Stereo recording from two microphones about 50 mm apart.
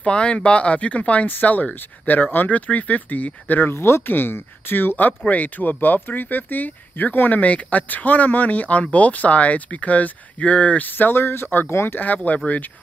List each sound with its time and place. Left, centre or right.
0.0 s speech: centre; by 3.7 s left
3.7 s speech: left
4.1 s speech: left
10.9 s speech: left